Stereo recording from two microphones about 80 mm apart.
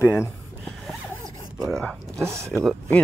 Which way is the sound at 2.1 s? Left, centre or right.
Right.